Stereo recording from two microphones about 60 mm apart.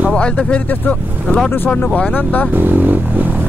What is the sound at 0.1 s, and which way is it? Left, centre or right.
Speech, centre.